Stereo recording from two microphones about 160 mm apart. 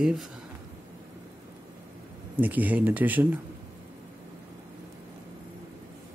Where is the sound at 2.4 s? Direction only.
10° right (ahead or behind).